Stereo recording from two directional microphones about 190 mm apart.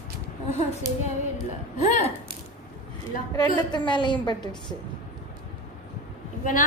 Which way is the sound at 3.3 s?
20° left (ahead or behind).